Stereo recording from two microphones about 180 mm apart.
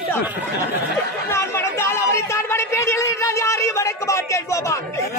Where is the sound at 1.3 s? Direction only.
15° left (ahead or behind).